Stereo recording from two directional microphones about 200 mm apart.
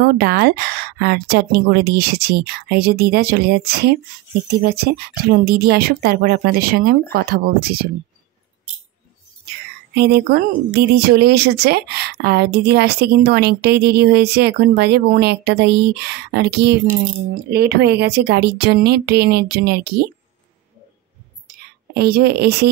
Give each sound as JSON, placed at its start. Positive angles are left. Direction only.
{"t": 0.0, "sound": "a woman's voice", "side_deg": -50}
{"t": 9.9, "sound": "a woman's voice", "side_deg": -55}
{"t": 21.5, "sound": "whispering", "side_deg": -50}